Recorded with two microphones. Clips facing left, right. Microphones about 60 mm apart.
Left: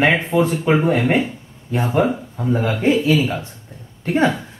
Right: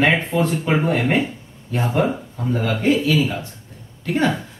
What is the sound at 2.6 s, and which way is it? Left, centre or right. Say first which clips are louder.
Speech: left 1 dB; left.